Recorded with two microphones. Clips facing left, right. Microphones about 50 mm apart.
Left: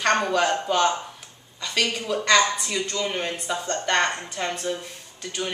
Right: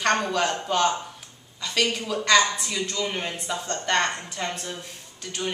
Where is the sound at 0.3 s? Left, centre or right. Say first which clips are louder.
Left 3 dB; centre.